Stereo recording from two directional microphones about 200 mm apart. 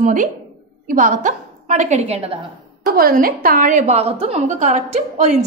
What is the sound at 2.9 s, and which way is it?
A woman's voice, 45° right (ahead or behind).